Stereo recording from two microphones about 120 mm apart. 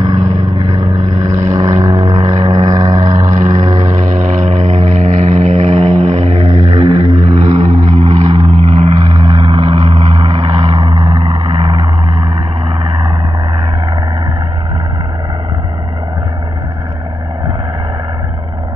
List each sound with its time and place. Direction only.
0.0 s vehicle: 35° right (ahead or behind)
3.3 s vehicle: 90° right; by 10.7 s 65° right (ahead or behind)
11.1 s vehicle: 50° right (ahead or behind)